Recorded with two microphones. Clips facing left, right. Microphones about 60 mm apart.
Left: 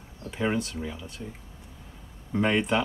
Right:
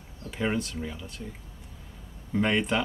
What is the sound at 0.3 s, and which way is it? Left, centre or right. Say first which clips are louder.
Speech: left 1 dB; centre.